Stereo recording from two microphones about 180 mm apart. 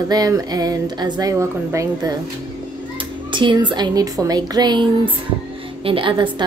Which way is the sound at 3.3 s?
25° right (ahead or behind).